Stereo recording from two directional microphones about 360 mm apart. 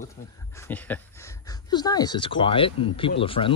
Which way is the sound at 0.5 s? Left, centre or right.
Centre.